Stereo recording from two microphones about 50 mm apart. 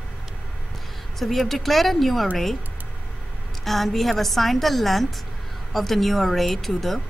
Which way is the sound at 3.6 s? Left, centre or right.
Centre.